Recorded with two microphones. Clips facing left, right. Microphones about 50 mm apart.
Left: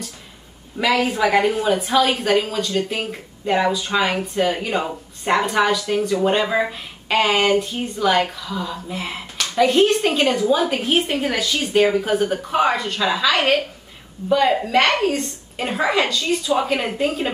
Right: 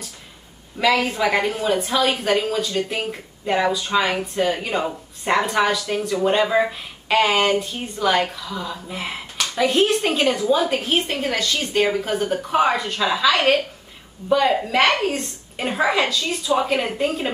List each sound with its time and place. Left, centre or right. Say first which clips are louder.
0.7 s speech: even; centre